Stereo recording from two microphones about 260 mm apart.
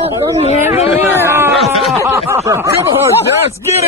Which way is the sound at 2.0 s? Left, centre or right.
Centre.